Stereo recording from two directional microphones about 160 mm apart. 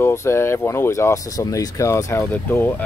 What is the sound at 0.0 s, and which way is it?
Speech, 15° left (ahead or behind).